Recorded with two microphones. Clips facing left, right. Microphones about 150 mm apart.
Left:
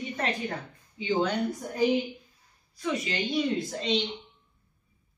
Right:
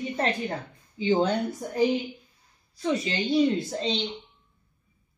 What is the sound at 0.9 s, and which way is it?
Speech, 30° right (ahead or behind).